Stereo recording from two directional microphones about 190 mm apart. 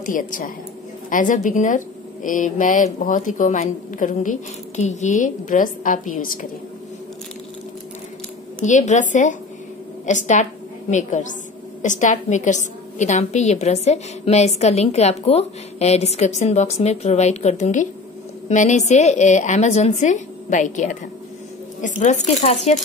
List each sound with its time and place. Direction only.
0.0 s a woman's voice: 45° left (ahead or behind)
8.6 s a woman's voice: 40° left (ahead or behind)